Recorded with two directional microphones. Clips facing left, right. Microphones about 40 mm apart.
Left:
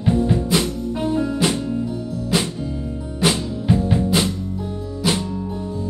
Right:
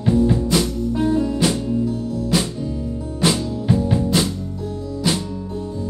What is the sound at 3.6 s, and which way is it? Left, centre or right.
Music, left.